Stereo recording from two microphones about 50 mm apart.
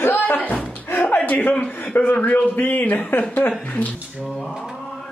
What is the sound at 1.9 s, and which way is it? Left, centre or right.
Speech, left.